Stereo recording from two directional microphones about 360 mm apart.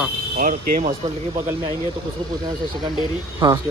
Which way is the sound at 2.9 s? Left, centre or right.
Centre.